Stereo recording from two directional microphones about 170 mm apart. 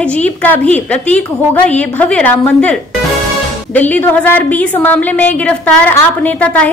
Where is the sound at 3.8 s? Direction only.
10° left (ahead or behind).